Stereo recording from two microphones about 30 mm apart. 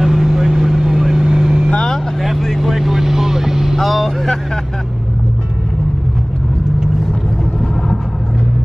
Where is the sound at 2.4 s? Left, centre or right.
Centre.